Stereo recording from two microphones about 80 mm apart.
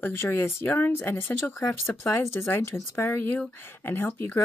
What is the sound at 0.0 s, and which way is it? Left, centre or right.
Speech, left.